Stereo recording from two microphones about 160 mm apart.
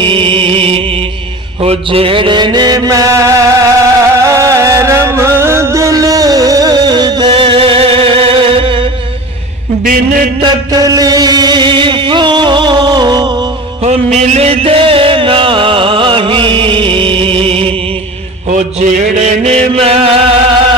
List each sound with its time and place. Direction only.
0.0 s music: 35° right (ahead or behind)
1.6 s mantra: 35° right (ahead or behind); by 3.6 s 20° right (ahead or behind)
4.2 s middle eastern music: 20° right (ahead or behind)
9.8 s a sound: 65° right (ahead or behind)
10.4 s a sound: 25° right (ahead or behind)
13.8 s music: 45° right (ahead or behind)
18.5 s mantra: 50° right (ahead or behind)